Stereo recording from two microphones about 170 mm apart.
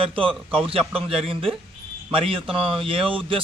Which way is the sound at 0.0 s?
30° right (ahead or behind).